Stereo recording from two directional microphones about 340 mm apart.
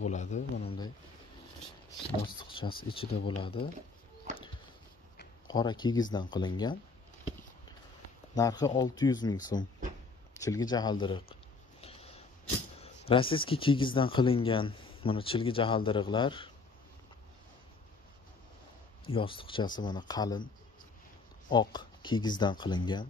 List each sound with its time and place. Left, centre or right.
0.0 s speech: left
2.2 s speech: centre
5.5 s speech: centre
8.4 s speech: centre
11.8 s a sound: centre
12.8 s speech: centre
19.0 s speech: centre
21.5 s speech: centre